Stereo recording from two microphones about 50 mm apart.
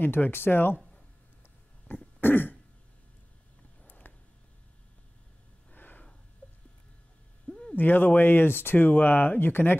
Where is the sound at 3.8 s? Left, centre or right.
Left.